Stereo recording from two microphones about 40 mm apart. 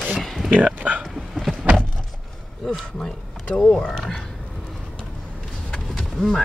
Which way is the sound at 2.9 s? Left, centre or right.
Centre.